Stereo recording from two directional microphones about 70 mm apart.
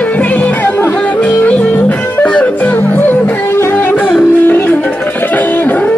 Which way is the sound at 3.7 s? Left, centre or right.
Left.